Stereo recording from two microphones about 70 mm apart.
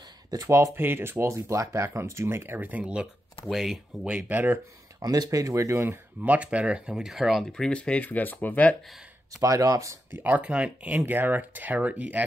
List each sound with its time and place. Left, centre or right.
0.5 s speech: right
2.8 s speech: centre
3.4 s speech: centre
4.0 s speech: centre
5.0 s speech: right
5.9 s speech: right; by 7.4 s centre
7.4 s speech: centre
9.4 s speech: right
10.1 s speech: right